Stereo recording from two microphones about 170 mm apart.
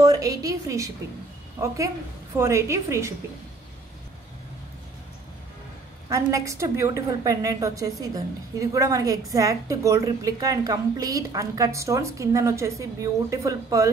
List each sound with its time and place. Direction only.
0.0 s a woman's voice: 20° right (ahead or behind)
2.3 s a woman's voice: 15° right (ahead or behind)
6.0 s a woman's voice: 20° right (ahead or behind)